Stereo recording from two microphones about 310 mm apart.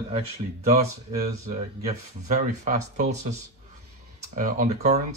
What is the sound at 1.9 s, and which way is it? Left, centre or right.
Speech, right.